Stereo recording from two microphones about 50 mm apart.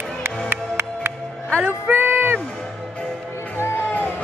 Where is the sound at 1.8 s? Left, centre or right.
Right.